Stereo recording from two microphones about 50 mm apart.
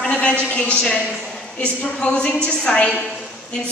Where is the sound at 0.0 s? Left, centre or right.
Left.